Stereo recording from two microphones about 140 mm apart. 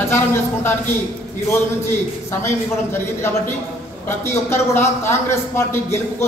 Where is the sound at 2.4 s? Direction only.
20° left (ahead or behind).